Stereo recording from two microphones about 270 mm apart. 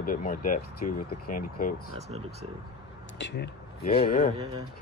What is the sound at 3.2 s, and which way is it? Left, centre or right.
Speech, left.